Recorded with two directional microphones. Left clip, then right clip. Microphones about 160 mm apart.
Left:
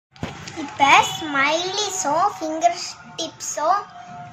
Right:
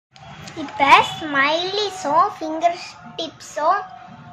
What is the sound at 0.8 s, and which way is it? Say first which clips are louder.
A child's voice: right 1 dB; 20° right (ahead or behind).